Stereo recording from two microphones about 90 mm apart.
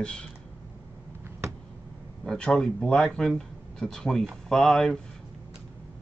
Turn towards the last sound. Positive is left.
turn(degrees=5)  # may be behind; listen again after turning